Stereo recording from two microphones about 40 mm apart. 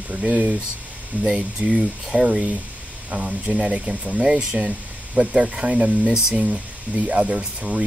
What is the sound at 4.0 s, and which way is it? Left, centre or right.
Speech, right.